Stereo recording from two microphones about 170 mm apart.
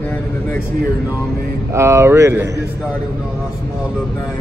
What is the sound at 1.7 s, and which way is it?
Speech, 15° right (ahead or behind).